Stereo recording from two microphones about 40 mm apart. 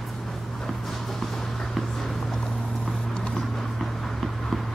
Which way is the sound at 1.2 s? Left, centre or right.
Centre.